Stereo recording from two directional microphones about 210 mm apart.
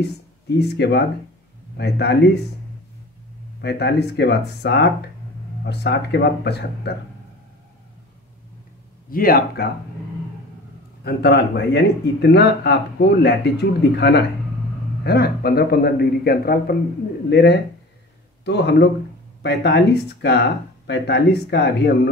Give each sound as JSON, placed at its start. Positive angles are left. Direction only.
{"t": 0.0, "sound": "speech", "side_deg": 55}
{"t": 3.6, "sound": "speech", "side_deg": 55}
{"t": 9.1, "sound": "speech", "side_deg": 45}
{"t": 11.1, "sound": "speech", "side_deg": 50}